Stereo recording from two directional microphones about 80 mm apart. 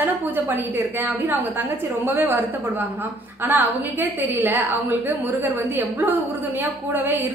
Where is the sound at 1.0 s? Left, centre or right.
Right.